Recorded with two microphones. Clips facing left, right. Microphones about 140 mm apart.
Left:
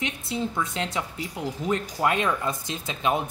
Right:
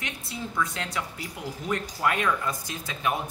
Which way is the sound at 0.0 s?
25° left (ahead or behind).